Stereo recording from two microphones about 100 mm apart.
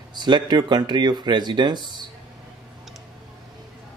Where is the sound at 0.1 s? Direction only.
50° right (ahead or behind).